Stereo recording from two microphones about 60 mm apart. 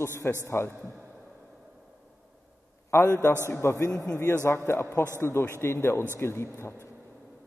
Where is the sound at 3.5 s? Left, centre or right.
Left.